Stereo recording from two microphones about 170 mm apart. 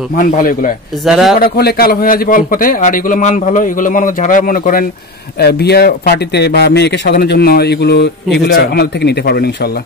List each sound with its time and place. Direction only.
0.1 s a man's voice: 55° left (ahead or behind)
1.0 s speech: 5° right (ahead or behind)
1.4 s a man's voice: 65° left (ahead or behind)
5.4 s speech: 70° left (ahead or behind)